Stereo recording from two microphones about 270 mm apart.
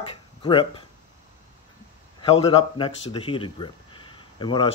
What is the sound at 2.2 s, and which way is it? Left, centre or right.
Speech, left.